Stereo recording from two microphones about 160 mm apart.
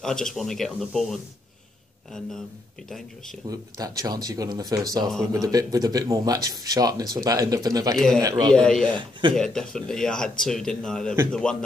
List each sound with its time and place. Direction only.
0.0 s speech: 5° left (ahead or behind)
3.4 s speech: 25° right (ahead or behind)
8.5 s speech: 5° left (ahead or behind)